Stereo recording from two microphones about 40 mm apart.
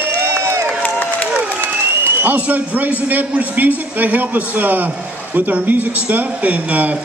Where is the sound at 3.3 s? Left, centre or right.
Right.